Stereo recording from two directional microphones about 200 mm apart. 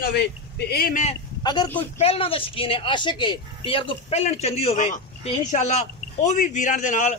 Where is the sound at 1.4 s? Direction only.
20° left (ahead or behind); by 7.1 s 40° left (ahead or behind).